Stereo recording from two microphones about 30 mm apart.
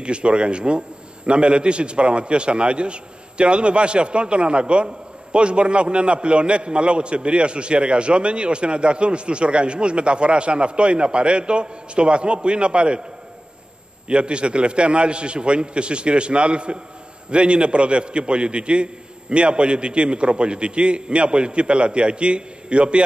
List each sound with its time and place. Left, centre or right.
0.0 s a man's voice: right
14.0 s a man's voice: right